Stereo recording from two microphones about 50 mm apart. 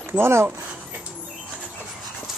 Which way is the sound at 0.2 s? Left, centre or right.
Right.